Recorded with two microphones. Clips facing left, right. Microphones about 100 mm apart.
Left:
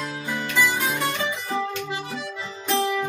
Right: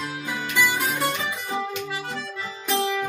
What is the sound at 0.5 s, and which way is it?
Music, 5° right (ahead or behind).